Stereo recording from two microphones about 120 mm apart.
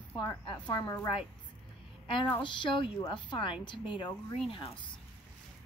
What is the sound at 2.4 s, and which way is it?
A woman's voice, 45° left (ahead or behind).